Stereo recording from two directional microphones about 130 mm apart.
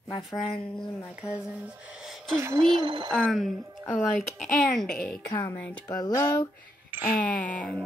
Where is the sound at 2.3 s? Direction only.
20° right (ahead or behind).